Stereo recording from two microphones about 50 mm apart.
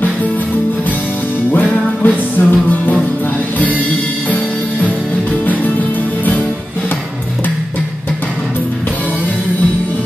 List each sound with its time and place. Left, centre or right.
1.5 s music: left